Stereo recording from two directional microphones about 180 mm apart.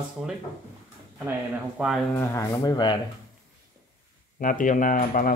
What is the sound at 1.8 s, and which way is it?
Speech, 5° right (ahead or behind).